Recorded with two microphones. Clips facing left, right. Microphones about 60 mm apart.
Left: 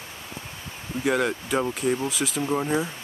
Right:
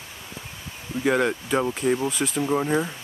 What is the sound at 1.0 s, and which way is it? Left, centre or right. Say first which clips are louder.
Speech: right 2 dB; centre.